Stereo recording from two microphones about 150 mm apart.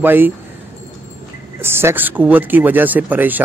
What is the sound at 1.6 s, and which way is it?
Speech, 15° right (ahead or behind).